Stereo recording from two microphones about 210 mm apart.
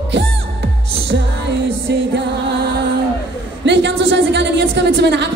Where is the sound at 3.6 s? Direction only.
55° right (ahead or behind).